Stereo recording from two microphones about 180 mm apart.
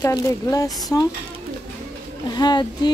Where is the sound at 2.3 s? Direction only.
25° left (ahead or behind).